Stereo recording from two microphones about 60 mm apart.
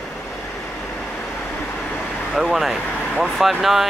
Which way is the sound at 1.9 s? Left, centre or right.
Left.